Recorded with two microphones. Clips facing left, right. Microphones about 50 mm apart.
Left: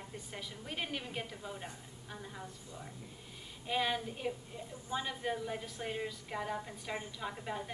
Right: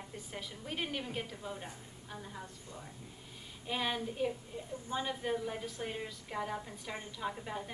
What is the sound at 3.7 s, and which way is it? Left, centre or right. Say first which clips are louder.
A woman's voice: left 1 dB; centre.